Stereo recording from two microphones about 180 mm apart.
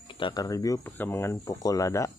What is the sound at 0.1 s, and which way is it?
Speech, 25° left (ahead or behind).